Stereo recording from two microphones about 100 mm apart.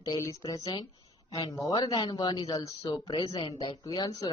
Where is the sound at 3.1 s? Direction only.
55° left (ahead or behind).